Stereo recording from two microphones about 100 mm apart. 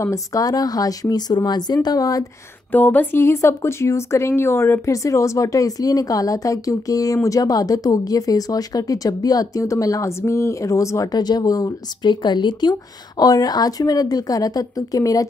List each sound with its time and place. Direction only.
0.0 s speech: 35° left (ahead or behind)
2.7 s speech: 20° left (ahead or behind); by 12.1 s 35° left (ahead or behind)
12.1 s a woman's voice: 50° left (ahead or behind)